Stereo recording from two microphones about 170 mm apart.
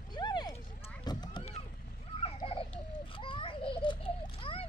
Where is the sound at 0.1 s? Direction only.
25° left (ahead or behind).